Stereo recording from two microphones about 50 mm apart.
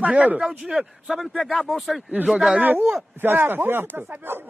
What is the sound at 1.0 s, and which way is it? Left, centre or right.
A man's voice, centre.